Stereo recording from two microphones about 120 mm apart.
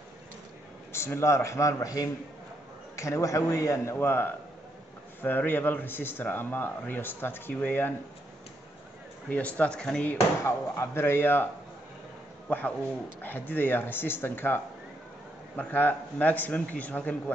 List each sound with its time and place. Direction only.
0.9 s a man's voice: 20° left (ahead or behind)
9.3 s a man's voice: 10° left (ahead or behind)
10.4 s a man's voice: 20° left (ahead or behind)
12.4 s a man's voice: 15° left (ahead or behind)